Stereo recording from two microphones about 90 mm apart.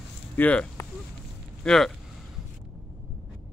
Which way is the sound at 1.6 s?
5° left (ahead or behind).